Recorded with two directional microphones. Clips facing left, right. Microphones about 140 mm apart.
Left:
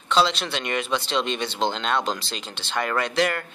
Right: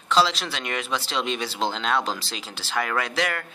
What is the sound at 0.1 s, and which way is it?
Speech, centre (ahead or behind).